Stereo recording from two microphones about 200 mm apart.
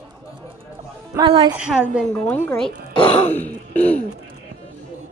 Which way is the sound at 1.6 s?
5° right (ahead or behind).